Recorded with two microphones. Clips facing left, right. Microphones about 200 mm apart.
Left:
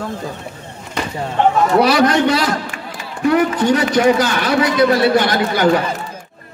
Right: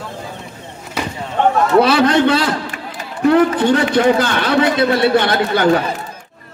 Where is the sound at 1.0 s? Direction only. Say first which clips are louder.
Even; 5° right (ahead or behind).